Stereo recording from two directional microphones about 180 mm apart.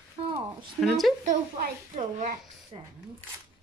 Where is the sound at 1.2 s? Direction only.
45° right (ahead or behind).